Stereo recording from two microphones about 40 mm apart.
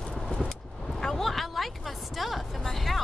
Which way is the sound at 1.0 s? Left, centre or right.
Centre.